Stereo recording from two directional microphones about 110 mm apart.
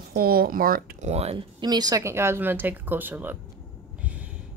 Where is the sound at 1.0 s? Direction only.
80° right.